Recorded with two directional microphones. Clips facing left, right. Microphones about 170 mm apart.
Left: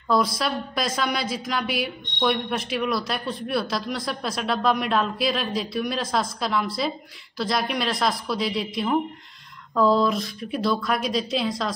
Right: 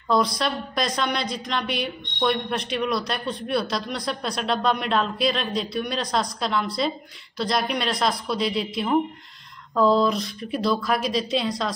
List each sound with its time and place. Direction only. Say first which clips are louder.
0.1 s a woman's voice: even; centre (ahead or behind)